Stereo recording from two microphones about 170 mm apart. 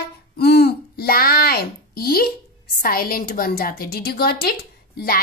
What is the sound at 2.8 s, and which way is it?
A woman's voice, 60° left (ahead or behind).